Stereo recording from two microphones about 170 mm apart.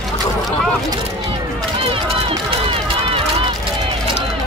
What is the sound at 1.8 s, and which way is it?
Run, 35° right (ahead or behind).